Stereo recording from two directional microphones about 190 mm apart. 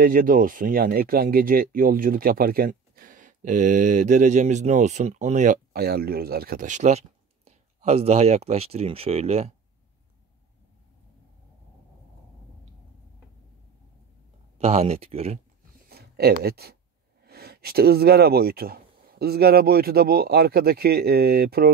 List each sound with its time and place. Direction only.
0.0 s speech: 45° right (ahead or behind)
14.6 s speech: 35° right (ahead or behind)
15.9 s speech: 55° right (ahead or behind)